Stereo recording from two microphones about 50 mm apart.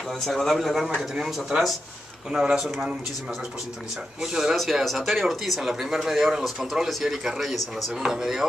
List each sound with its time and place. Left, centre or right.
0.2 s speech: centre
0.9 s a man's voice: centre
4.2 s a man's voice: centre